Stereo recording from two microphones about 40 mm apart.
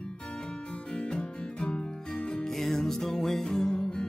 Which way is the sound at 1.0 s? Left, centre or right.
Left.